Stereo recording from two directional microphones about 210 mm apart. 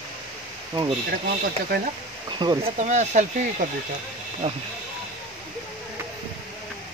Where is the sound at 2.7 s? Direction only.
35° right (ahead or behind).